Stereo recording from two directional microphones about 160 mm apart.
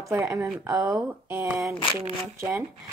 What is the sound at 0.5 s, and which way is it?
A woman's voice, 20° right (ahead or behind).